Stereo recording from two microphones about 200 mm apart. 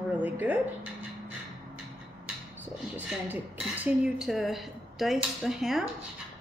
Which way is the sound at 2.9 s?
5° right (ahead or behind).